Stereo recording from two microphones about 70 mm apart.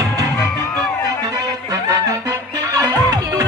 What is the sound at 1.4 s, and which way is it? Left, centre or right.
Music, right.